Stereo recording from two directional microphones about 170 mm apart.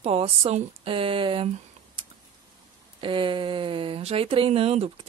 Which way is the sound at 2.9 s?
30° right (ahead or behind).